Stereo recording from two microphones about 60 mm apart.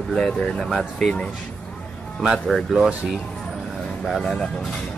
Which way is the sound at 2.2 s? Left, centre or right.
Centre.